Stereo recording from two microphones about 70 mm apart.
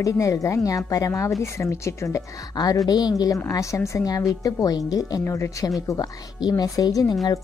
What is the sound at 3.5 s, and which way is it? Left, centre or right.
Speech, left.